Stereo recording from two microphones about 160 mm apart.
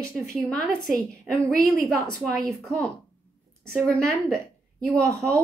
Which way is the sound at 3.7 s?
15° right (ahead or behind).